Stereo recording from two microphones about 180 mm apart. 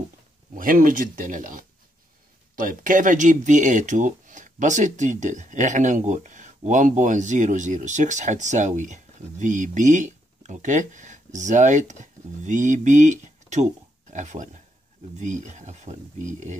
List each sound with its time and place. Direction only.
0.6 s speech: 50° right (ahead or behind)